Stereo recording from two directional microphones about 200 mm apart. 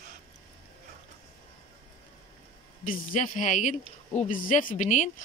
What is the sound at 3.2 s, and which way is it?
Speech, 40° left (ahead or behind).